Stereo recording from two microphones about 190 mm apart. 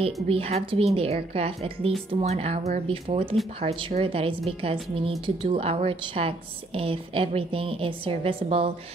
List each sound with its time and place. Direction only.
0.0 s a woman's voice: 30° right (ahead or behind)